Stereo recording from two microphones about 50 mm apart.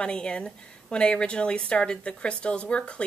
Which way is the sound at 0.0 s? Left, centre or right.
Centre.